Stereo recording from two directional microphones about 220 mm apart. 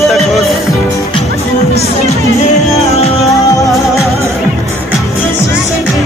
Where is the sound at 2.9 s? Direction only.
30° left (ahead or behind).